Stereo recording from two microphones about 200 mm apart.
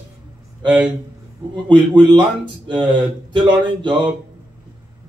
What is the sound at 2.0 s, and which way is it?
Speech, 20° right (ahead or behind).